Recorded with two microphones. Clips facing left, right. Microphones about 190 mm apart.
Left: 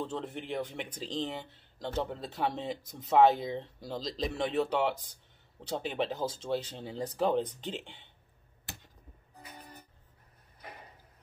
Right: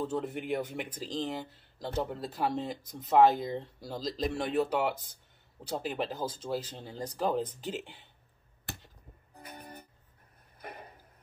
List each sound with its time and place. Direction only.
0.0 s speech: 10° right (ahead or behind)
9.4 s music: 55° right (ahead or behind)